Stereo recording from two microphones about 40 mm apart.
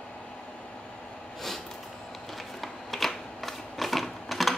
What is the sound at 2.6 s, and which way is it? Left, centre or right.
Camera, centre.